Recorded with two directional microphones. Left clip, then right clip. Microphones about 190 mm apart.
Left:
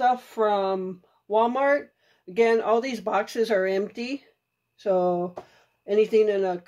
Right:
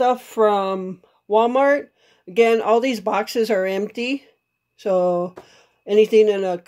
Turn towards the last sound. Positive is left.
turn(degrees=-50)  # may be behind; listen again after turning